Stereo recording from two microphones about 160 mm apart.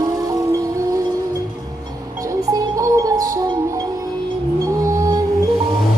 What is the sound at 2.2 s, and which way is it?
Music, 20° right (ahead or behind).